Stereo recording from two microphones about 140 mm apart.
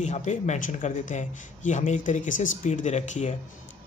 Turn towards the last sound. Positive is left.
turn(degrees=55)  # may be behind; listen again after turning